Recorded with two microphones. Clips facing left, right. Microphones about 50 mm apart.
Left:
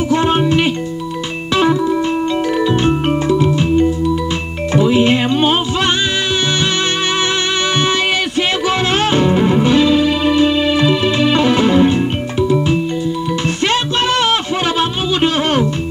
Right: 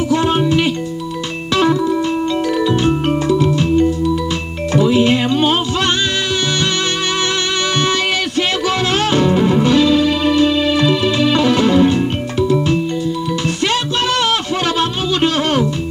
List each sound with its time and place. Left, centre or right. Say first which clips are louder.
0.1 s music: left 1 dB; left
1.5 s music: left 1 dB; centre
13.6 s music: left 2 dB; left